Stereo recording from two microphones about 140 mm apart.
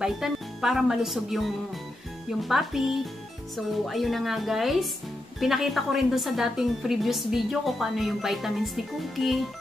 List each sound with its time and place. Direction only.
0.0 s a woman's voice: 5° right (ahead or behind)